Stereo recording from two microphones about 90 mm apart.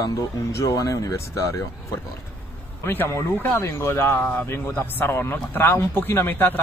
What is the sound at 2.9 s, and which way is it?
Speech, 25° left (ahead or behind).